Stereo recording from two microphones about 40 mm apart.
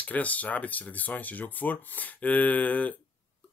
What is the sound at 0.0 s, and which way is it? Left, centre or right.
Speech, left.